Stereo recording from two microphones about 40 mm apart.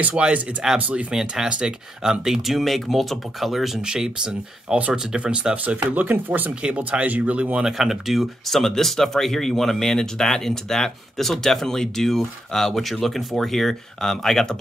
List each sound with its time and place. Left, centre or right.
0.1 s speech: right
0.7 s speech: right
1.1 s speech: centre
2.2 s speech: centre
3.8 s speech: right
5.9 s speech: right
6.6 s speech: right
7.6 s speech: centre